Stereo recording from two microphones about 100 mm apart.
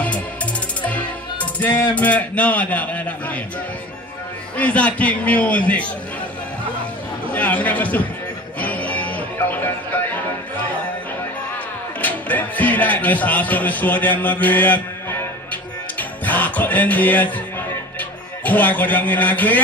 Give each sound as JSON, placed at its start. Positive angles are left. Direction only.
{"t": 0.8, "sound": "speech", "side_deg": 15}
{"t": 4.6, "sound": "a man's voice", "side_deg": 15}
{"t": 7.3, "sound": "a man's voice", "side_deg": 15}
{"t": 8.5, "sound": "music", "side_deg": 15}
{"t": 12.0, "sound": "speech", "side_deg": 15}
{"t": 16.0, "sound": "music", "side_deg": 15}
{"t": 18.4, "sound": "a man's voice", "side_deg": 15}